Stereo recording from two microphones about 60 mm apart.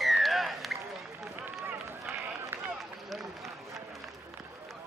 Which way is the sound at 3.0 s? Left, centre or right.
Centre.